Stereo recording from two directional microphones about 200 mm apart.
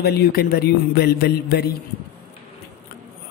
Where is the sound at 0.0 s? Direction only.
50° left (ahead or behind).